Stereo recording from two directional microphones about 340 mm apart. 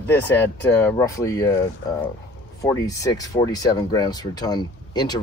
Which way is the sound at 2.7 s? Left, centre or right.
Centre.